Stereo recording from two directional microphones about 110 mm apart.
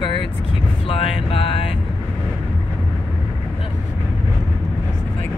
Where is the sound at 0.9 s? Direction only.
60° left (ahead or behind).